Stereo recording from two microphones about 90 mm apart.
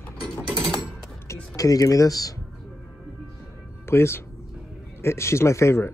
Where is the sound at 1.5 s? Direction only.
40° left (ahead or behind).